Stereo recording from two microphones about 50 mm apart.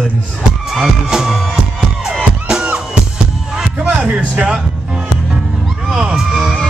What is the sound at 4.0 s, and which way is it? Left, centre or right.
Speech, right.